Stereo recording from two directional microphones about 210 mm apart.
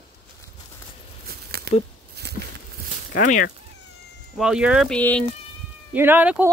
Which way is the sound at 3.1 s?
40° left (ahead or behind).